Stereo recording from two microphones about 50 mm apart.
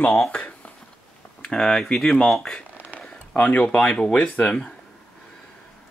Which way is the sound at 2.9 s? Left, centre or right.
Left.